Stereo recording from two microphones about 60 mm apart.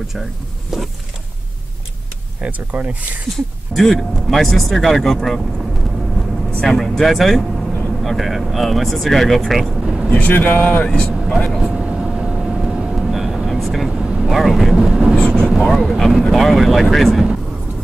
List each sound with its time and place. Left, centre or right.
0.7 s a sound: centre
2.4 s speech: right
3.7 s speech: centre
6.6 s speech: centre
10.1 s speech: left
11.2 s speech: centre
11.6 s vehicle: centre
13.5 s speech: centre
13.9 s vehicle: centre
14.3 s speech: centre
14.9 s a sound: centre
15.1 s vehicle: centre
15.5 s speech: centre